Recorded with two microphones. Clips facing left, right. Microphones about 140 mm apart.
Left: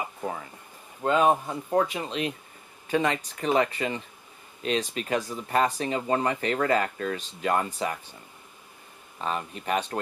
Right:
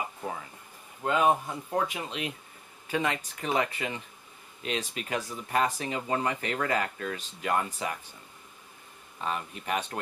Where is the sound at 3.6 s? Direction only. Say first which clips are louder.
Left 4 dB; 35° left (ahead or behind).